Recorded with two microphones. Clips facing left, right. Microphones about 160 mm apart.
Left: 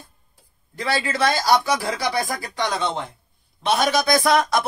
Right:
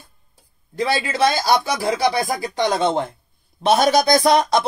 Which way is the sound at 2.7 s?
45° right (ahead or behind).